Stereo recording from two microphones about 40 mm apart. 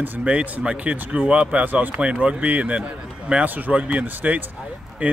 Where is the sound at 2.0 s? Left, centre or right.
Right.